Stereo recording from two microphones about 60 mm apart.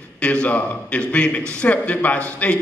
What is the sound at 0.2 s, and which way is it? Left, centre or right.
A man's voice, left.